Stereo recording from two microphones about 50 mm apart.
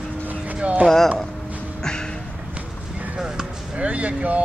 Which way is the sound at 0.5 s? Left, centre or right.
Right.